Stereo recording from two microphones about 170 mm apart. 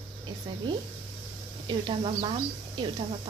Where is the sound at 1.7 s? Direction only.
30° right (ahead or behind).